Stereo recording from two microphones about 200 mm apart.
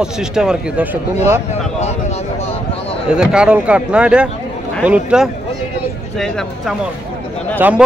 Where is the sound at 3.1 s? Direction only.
5° right (ahead or behind).